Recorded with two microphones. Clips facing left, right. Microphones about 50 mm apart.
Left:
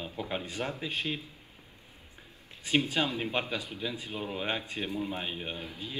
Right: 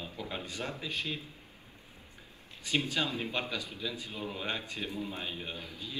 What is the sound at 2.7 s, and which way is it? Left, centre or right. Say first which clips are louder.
A man's voice: left 3 dB; left.